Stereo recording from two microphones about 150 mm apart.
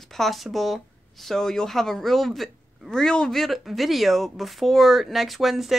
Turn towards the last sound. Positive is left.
turn(degrees=0)  # may be behind; listen again after turning